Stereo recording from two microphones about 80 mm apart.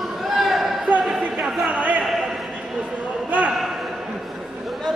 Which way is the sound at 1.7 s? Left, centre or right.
Centre.